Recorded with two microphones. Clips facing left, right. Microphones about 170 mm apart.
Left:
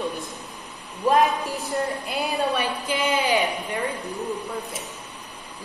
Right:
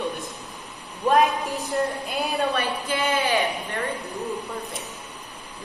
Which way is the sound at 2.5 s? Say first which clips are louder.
Even; 15° left (ahead or behind).